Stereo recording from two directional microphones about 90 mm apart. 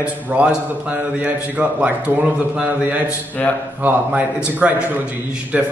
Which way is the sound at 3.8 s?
20° right (ahead or behind).